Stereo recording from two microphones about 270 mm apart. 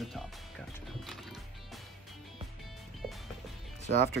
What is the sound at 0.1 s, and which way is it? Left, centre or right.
Music, centre.